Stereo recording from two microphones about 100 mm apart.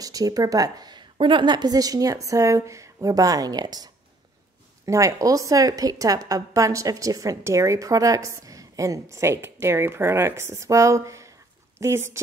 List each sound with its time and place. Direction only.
0.0 s speech: 35° right (ahead or behind)
1.1 s a woman's voice: 60° right (ahead or behind); by 12.2 s 25° right (ahead or behind)